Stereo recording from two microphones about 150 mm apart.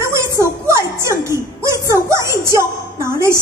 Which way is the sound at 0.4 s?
20° right (ahead or behind).